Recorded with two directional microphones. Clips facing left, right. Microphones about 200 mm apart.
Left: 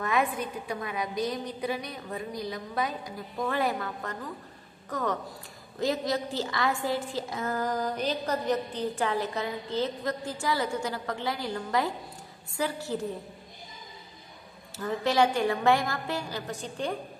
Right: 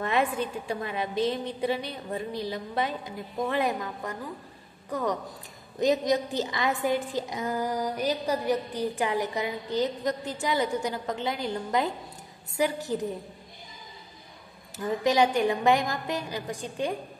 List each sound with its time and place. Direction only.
0.0 s a woman's voice: 25° right (ahead or behind)
14.8 s a woman's voice: 15° right (ahead or behind)